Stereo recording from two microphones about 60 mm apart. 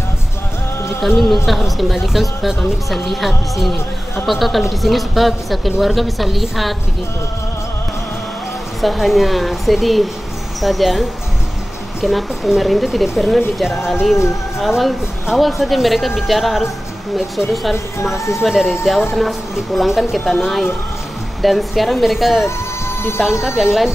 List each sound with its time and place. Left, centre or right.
1.0 s speech: centre
8.8 s speech: centre
18.1 s speech: left
18.4 s speech: centre